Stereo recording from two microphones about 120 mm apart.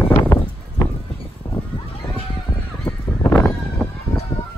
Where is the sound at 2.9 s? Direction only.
20° left (ahead or behind).